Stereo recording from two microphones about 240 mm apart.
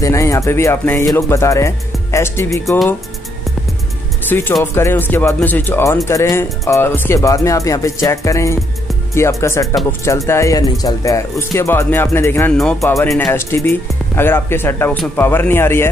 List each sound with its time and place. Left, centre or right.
0.0 s speech: centre
4.3 s speech: centre